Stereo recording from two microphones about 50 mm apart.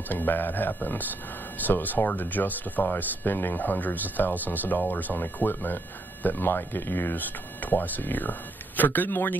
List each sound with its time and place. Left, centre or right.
0.1 s speech: left